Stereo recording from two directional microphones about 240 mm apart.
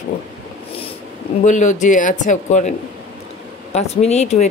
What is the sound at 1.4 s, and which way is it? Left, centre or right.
Speech, left.